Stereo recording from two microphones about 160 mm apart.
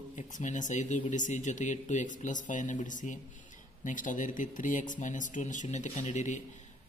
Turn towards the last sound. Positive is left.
turn(degrees=50)  # may be behind; listen again after turning